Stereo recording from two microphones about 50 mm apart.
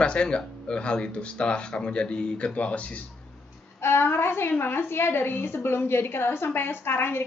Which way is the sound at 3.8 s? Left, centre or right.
Left.